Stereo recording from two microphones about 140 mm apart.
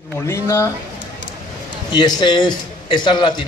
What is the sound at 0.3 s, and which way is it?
Speech, 20° left (ahead or behind).